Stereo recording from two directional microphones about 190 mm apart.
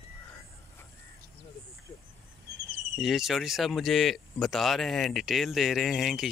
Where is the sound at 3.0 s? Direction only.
Centre (ahead or behind).